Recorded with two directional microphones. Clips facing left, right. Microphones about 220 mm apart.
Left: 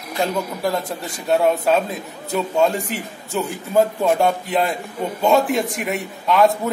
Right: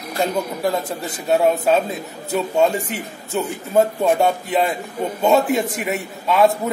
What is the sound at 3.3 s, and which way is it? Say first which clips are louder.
A man's voice: right 1 dB; centre (ahead or behind).